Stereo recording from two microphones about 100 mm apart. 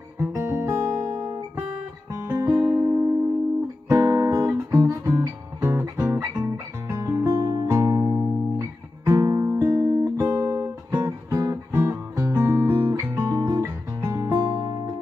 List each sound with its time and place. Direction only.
0.3 s guitar: 25° right (ahead or behind)
2.2 s music: 25° right (ahead or behind)
3.9 s guitar: 30° right (ahead or behind)
7.5 s music: 30° right (ahead or behind)
13.1 s guitar: 25° right (ahead or behind)
14.4 s music: 45° right (ahead or behind)